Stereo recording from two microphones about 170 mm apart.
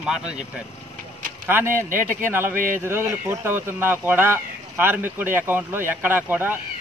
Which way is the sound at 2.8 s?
15° right (ahead or behind).